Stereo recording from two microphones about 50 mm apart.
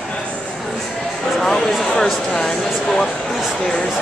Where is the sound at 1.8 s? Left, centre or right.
Centre.